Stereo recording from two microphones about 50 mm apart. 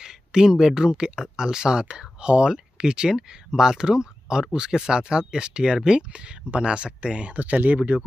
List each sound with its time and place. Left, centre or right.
0.0 s speech: centre; by 8.0 s right